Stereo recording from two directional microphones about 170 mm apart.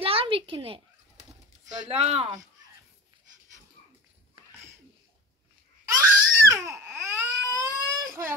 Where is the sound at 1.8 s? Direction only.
35° right (ahead or behind).